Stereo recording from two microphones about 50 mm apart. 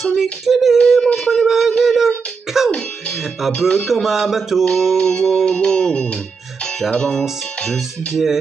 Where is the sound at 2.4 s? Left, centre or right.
Centre.